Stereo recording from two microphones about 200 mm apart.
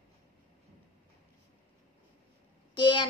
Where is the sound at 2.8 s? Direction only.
25° left (ahead or behind).